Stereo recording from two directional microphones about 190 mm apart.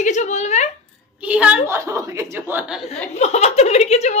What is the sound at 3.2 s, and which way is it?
Speech, 35° left (ahead or behind).